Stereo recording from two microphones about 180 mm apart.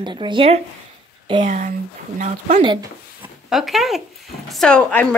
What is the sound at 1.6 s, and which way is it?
Speech, 45° right (ahead or behind).